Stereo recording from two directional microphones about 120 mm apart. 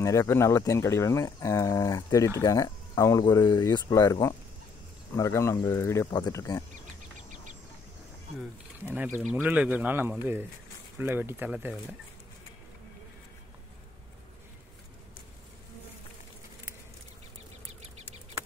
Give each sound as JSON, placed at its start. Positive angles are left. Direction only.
{"t": 0.0, "sound": "speech", "side_deg": 25}
{"t": 6.0, "sound": "speech", "side_deg": 35}
{"t": 6.7, "sound": "chicken", "side_deg": -90}
{"t": 8.8, "sound": "speech", "side_deg": -15}